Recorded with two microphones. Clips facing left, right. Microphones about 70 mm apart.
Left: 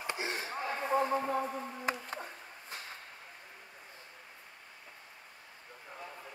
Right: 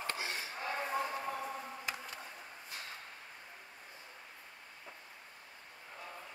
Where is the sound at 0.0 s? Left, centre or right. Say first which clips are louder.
Left 3 dB; left.